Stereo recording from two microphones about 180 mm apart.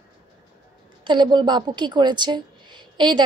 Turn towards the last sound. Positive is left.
turn(degrees=-25)  # may be behind; listen again after turning